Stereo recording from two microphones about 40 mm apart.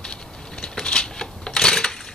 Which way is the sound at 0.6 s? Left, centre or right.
Centre.